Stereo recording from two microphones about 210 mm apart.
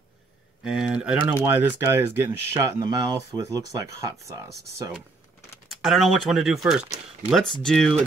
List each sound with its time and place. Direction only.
0.7 s speech: 5° right (ahead or behind)
5.7 s speech: centre (ahead or behind)